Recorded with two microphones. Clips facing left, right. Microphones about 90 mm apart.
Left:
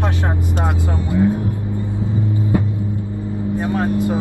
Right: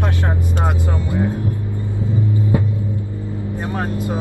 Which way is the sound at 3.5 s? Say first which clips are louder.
Left 6 dB; 20° left (ahead or behind).